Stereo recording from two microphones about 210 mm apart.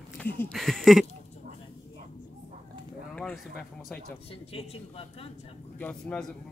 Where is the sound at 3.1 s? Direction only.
5° left (ahead or behind).